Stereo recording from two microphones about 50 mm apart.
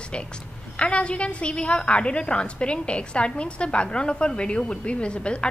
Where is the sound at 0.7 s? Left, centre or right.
Left.